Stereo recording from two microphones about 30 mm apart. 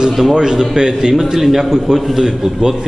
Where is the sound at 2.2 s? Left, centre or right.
Centre.